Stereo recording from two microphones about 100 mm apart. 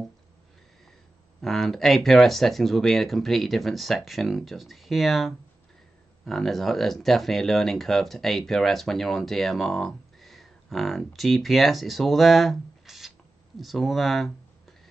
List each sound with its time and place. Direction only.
1.4 s speech: 5° left (ahead or behind)